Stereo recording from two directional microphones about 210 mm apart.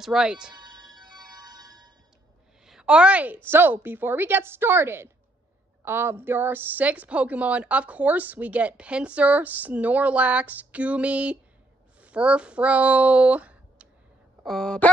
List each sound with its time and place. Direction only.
0.0 s speech: centre (ahead or behind)
0.5 s music: 20° right (ahead or behind)
2.6 s a woman's voice: 5° right (ahead or behind)